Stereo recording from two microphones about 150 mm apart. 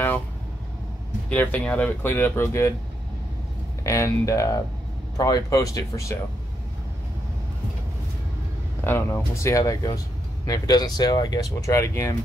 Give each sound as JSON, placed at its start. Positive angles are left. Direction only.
{"t": 1.3, "sound": "speech", "side_deg": 10}
{"t": 3.8, "sound": "speech", "side_deg": 20}
{"t": 8.8, "sound": "speech", "side_deg": 15}